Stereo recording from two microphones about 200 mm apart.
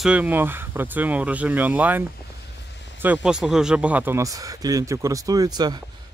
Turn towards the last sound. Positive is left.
turn(degrees=-20)  # may be behind; listen again after turning